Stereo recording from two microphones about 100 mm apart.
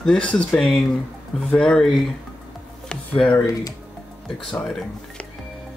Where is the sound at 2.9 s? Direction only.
10° left (ahead or behind).